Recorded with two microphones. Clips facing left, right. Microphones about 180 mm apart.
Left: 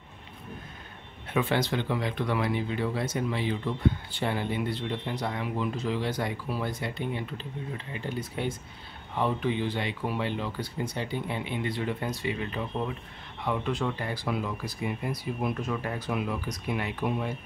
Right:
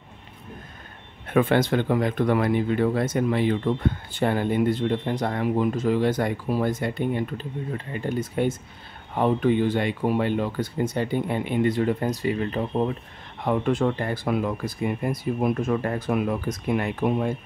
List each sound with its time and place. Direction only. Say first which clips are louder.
1.3 s speech: right 7 dB; 50° right (ahead or behind)